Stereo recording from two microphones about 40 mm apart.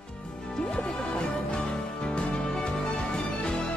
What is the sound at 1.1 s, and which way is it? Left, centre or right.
Music, left.